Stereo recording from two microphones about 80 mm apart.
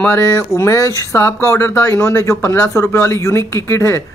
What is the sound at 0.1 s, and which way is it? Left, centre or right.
Speech, left.